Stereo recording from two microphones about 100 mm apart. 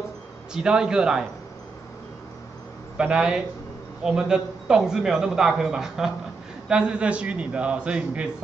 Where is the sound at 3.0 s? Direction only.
10° right (ahead or behind).